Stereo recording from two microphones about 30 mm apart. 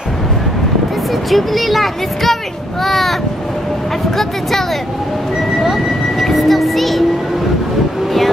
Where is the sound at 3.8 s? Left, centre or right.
Centre.